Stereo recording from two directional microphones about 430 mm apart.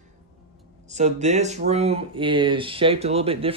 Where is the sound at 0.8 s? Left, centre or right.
Centre.